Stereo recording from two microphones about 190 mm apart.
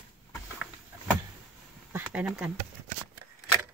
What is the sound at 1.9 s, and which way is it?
Speech, 5° right (ahead or behind).